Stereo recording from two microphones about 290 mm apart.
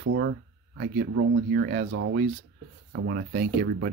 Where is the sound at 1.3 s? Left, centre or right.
Right.